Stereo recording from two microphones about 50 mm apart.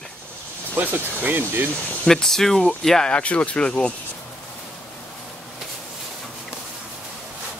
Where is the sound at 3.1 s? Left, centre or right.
Left.